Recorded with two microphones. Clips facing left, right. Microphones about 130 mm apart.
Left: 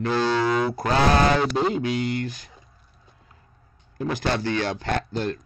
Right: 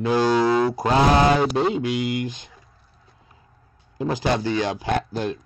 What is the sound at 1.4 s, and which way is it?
Speech, 5° right (ahead or behind).